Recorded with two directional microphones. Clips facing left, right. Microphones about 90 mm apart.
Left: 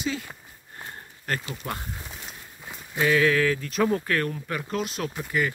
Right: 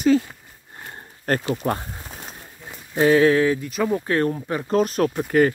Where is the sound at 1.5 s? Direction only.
40° right (ahead or behind); by 3.6 s 25° right (ahead or behind).